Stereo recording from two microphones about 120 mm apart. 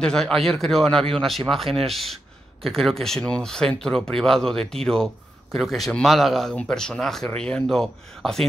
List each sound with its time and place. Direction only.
0.0 s speech: 5° left (ahead or behind)